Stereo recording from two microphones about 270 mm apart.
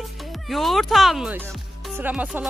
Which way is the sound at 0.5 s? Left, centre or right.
Centre.